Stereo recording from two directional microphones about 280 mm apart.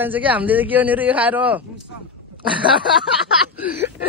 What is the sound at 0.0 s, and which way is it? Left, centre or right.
A man's voice, centre.